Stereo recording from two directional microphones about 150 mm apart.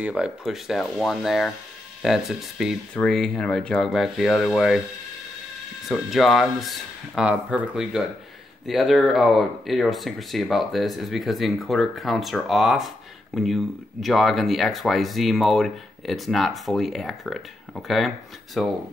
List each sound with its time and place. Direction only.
0.0 s speech: 5° right (ahead or behind)
5.9 s speech: centre (ahead or behind)